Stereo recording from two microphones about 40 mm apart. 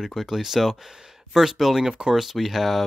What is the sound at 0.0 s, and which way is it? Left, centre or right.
Speech, centre.